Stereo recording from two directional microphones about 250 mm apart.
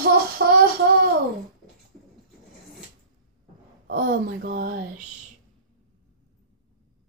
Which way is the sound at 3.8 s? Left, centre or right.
Right.